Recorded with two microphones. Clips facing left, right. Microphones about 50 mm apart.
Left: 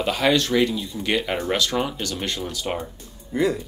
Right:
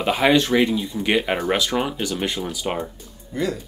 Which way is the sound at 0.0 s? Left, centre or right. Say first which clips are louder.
Right 3 dB; centre.